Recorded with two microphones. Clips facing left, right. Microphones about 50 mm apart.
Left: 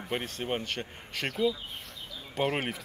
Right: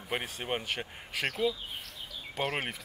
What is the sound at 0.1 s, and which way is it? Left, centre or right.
Speech, centre.